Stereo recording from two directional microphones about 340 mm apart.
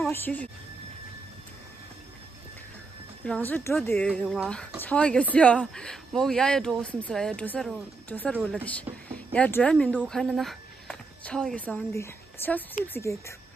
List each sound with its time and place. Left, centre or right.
0.0 s speech: centre
3.3 s speech: centre